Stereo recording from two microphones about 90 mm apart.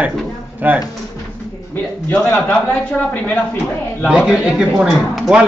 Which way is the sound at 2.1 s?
20° left (ahead or behind).